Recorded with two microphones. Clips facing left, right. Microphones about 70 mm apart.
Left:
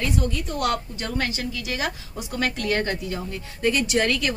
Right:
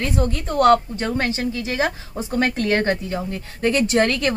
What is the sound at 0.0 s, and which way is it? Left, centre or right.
A woman's voice, right.